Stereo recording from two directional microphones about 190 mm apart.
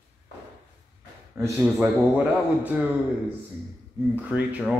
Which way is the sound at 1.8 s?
5° right (ahead or behind).